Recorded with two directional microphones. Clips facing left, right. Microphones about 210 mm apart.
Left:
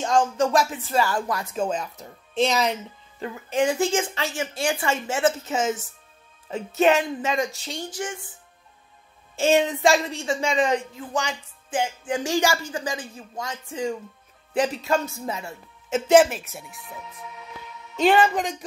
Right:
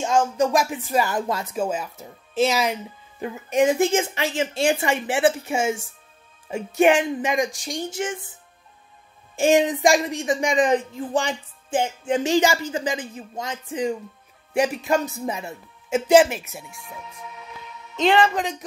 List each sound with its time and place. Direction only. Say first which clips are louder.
0.4 s a woman's voice: right 1 dB; 15° right (ahead or behind)
1.5 s a woman's voice: right 1 dB; 10° right (ahead or behind)
9.3 s a woman's voice: right 2 dB; 15° right (ahead or behind)
10.8 s a woman's voice: right 4 dB; 30° right (ahead or behind); by 16.4 s 5° right (ahead or behind)
17.9 s speech: even; 5° left (ahead or behind)